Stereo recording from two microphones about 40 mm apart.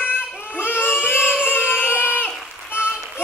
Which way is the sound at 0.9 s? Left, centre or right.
Left.